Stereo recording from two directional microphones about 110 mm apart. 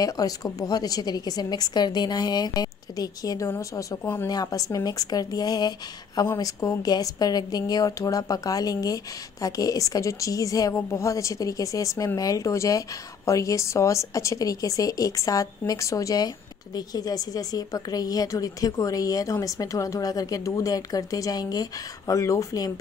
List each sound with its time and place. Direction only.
0.0 s speech: 35° left (ahead or behind)